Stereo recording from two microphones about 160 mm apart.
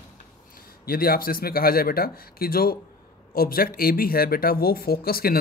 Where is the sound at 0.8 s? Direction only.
70° left (ahead or behind).